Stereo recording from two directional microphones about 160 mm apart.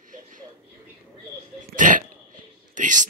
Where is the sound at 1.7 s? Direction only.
55° right (ahead or behind).